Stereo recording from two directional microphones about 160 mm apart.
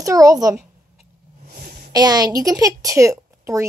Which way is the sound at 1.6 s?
70° right (ahead or behind).